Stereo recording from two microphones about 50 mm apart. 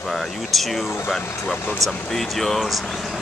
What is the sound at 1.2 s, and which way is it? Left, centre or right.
Speech, left.